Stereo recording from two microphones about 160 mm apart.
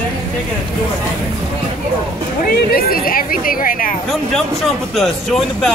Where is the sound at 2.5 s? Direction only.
65° left (ahead or behind).